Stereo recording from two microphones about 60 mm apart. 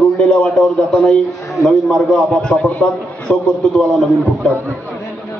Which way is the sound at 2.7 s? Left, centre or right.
Left.